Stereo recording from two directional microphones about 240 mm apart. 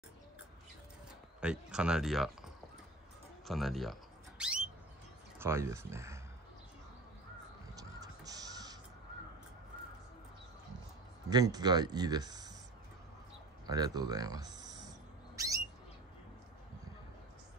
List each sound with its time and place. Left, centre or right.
1.4 s speech: centre
4.4 s a sound: centre
5.4 s speech: centre
7.7 s crow: centre
11.2 s speech: centre
13.7 s a sound: centre